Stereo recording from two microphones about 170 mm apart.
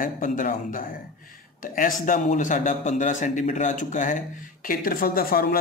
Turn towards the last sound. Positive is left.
turn(degrees=60)  # may be behind; listen again after turning